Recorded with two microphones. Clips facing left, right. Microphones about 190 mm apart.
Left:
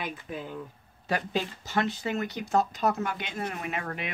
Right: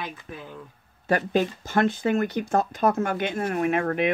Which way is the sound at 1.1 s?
50° right (ahead or behind).